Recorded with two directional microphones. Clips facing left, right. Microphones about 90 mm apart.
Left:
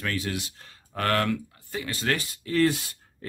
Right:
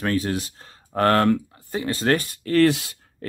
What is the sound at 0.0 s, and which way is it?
Speech, 35° right (ahead or behind).